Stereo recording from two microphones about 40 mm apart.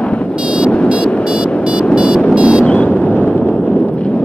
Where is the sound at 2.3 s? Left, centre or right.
Right.